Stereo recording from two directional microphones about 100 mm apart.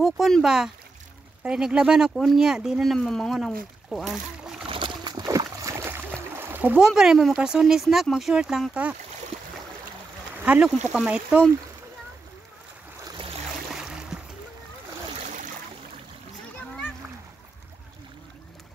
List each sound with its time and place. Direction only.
0.0 s speech: centre (ahead or behind)
4.6 s a sound: 55° right (ahead or behind)
5.4 s splash: 30° right (ahead or behind)
6.8 s speech: 5° right (ahead or behind)
10.3 s speech: 15° right (ahead or behind)
13.7 s a sound: 5° right (ahead or behind)